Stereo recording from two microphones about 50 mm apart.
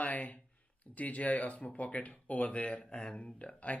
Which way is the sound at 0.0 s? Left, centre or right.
Left.